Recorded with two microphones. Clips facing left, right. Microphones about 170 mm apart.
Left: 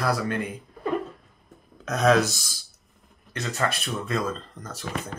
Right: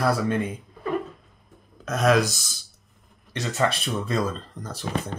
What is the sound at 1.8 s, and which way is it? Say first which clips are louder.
Speech: even; 5° right (ahead or behind).